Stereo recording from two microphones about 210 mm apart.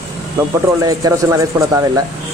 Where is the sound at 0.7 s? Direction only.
15° right (ahead or behind).